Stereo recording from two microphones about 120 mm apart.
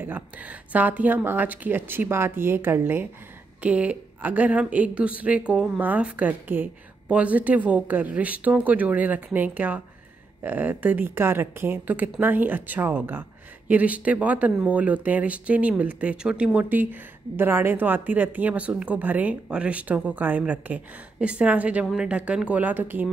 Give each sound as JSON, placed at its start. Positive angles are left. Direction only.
{"t": 0.0, "sound": "speech", "side_deg": -15}